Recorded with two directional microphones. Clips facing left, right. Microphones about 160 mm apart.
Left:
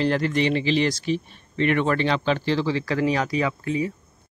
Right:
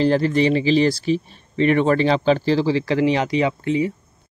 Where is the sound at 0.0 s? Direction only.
30° right (ahead or behind).